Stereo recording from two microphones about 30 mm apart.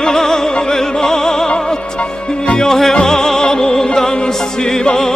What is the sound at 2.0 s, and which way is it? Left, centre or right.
Speech, left.